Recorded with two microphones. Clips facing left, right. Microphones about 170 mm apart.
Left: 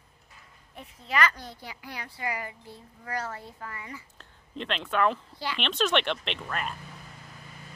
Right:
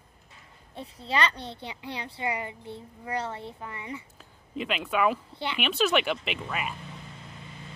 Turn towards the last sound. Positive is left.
turn(degrees=-5)  # may be behind; listen again after turning